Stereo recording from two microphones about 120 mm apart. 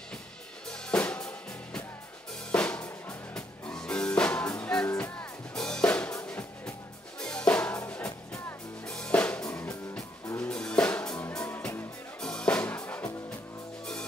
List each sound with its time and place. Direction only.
0.7 s drum kit: 10° left (ahead or behind)
2.5 s music: 10° left (ahead or behind)